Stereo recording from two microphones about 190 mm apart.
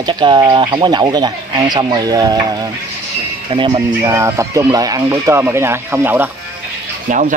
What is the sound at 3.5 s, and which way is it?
Speech, 25° right (ahead or behind).